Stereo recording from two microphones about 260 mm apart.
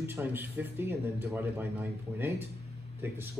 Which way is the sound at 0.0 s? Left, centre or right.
Centre.